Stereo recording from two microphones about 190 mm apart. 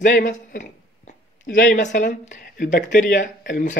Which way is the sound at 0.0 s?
40° left (ahead or behind).